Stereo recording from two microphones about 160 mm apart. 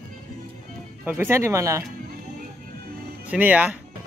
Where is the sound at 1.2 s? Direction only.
15° right (ahead or behind).